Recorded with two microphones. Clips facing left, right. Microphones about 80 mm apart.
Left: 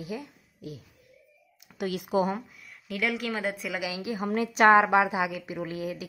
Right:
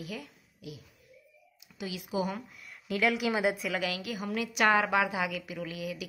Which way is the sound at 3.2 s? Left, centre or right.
Centre.